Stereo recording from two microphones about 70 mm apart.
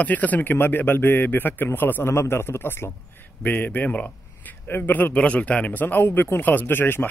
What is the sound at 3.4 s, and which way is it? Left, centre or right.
A man's voice, left.